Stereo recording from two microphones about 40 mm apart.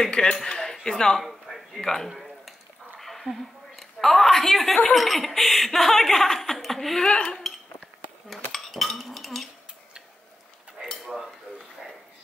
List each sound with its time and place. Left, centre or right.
0.0 s speech: centre
2.0 s a sound: centre
3.0 s a woman's voice: centre
7.1 s dishes: left
8.5 s dishes: centre
10.8 s dishes: centre